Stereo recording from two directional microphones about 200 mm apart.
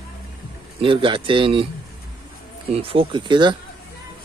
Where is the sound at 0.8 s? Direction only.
25° right (ahead or behind).